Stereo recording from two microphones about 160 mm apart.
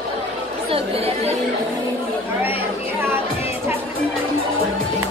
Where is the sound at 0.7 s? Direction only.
40° right (ahead or behind).